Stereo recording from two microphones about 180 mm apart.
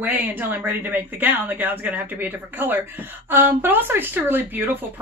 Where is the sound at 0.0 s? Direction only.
10° right (ahead or behind).